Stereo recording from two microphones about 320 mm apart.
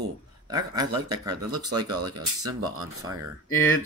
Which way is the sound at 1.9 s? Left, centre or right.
Right.